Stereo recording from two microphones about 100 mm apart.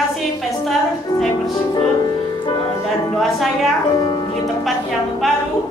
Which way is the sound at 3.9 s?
45° left (ahead or behind).